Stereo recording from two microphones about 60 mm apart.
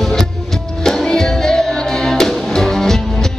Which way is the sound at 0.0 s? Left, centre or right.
Centre.